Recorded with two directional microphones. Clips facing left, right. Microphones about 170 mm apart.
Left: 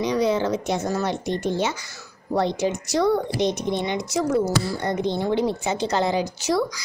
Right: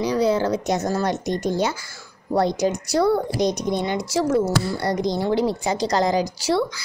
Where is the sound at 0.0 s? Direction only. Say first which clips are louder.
Right 1 dB; 35° right (ahead or behind).